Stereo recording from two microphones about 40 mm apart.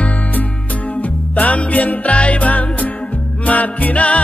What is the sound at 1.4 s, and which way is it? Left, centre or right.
Music, left.